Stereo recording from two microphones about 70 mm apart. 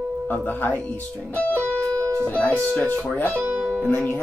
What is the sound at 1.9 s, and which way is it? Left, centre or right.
Music, right.